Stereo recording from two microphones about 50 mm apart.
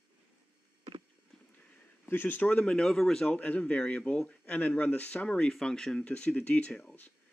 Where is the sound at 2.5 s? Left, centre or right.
Centre.